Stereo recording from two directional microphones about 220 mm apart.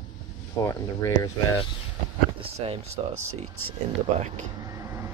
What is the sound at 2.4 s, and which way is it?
Speech, 25° right (ahead or behind).